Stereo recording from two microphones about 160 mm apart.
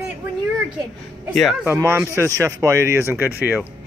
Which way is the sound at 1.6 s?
15° right (ahead or behind).